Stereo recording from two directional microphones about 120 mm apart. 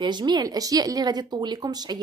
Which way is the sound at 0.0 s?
40° right (ahead or behind).